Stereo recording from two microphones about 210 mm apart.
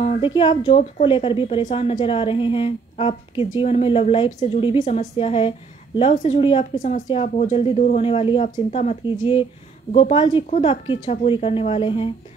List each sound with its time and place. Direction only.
0.0 s a woman's voice: 25° left (ahead or behind)
9.1 s a woman's voice: 20° left (ahead or behind)